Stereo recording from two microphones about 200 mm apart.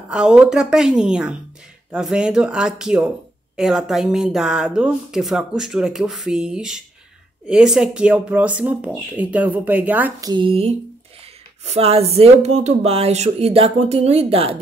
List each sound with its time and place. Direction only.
0.1 s a woman's voice: 5° right (ahead or behind)
10.3 s speech: 25° right (ahead or behind)